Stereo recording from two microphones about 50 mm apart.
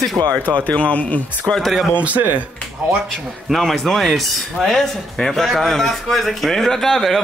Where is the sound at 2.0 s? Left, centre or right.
Right.